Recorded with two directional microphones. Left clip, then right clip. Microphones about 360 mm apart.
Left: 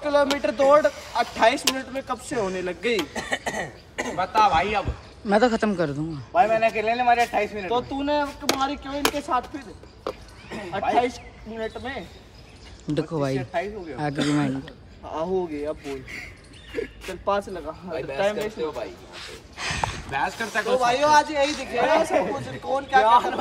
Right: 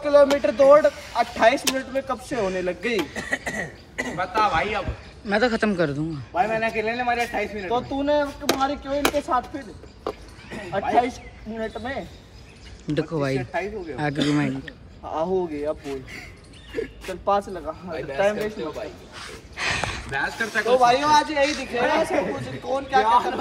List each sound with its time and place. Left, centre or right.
0.0 s a man's voice: centre
3.2 s speech: centre
5.2 s a man's voice: centre
10.7 s a man's voice: centre
14.1 s a man's voice: centre
15.0 s a man's voice: centre
19.5 s a sound: centre
20.6 s a man's voice: centre